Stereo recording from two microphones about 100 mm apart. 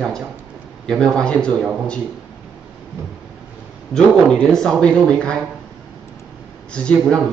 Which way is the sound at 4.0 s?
5° left (ahead or behind).